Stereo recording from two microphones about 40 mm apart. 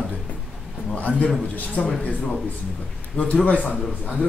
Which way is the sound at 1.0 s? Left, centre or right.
Left.